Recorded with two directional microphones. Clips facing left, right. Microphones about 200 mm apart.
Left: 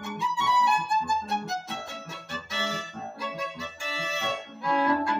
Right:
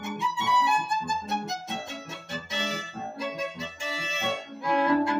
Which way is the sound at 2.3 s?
20° right (ahead or behind).